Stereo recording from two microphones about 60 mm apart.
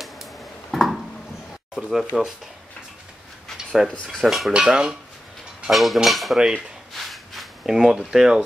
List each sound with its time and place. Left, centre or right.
0.0 s a sound: centre
1.8 s dishes: centre
4.2 s dishes: centre
4.5 s dishes: centre
5.7 s dishes: centre
6.3 s dishes: centre
6.9 s a sound: centre
8.1 s dishes: centre